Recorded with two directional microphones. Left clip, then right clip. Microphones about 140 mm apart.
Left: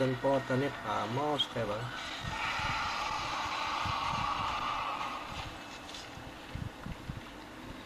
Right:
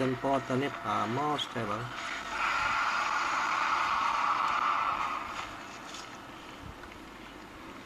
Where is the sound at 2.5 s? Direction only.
50° right (ahead or behind).